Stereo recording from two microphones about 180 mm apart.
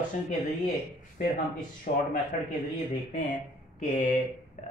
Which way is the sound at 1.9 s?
45° left (ahead or behind).